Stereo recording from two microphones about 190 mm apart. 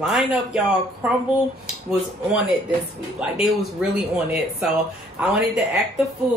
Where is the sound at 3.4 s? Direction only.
5° right (ahead or behind).